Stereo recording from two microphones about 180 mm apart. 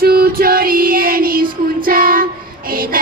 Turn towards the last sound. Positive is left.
turn(degrees=-50)  # may be behind; listen again after turning